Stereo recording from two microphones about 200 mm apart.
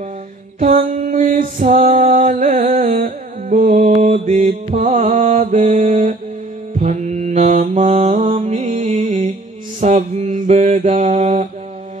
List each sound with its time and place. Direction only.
0.6 s music: 40° right (ahead or behind)
6.8 s mantra: 35° right (ahead or behind)